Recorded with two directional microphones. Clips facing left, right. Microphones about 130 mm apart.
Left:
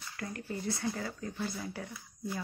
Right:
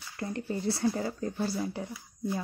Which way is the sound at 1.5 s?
20° right (ahead or behind).